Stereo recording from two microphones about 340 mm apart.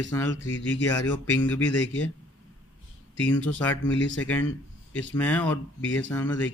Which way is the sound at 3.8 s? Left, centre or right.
Left.